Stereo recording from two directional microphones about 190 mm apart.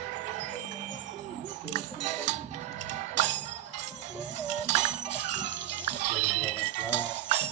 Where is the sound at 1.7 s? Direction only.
40° right (ahead or behind).